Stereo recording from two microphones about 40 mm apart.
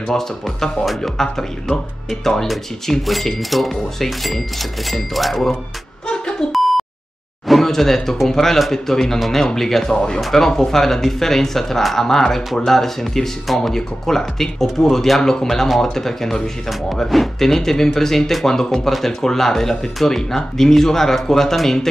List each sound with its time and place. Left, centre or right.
0.1 s speech: centre
6.0 s beep: centre
6.5 s beep: centre
7.4 s speech: centre
9.9 s speech: centre